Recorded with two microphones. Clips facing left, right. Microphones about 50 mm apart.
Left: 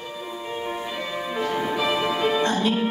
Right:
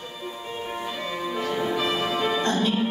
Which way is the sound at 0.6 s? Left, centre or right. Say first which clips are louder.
Even; left.